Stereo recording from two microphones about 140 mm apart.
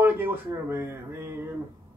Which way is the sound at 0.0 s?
15° right (ahead or behind).